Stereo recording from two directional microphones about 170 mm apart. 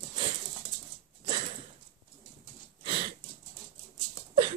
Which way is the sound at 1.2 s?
35° right (ahead or behind).